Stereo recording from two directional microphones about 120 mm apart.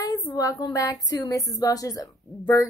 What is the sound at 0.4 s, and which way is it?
Speech, 30° left (ahead or behind).